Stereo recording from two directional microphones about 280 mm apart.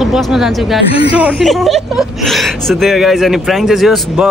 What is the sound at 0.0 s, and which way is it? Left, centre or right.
Speech, centre.